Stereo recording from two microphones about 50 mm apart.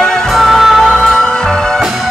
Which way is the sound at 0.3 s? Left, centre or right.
Centre.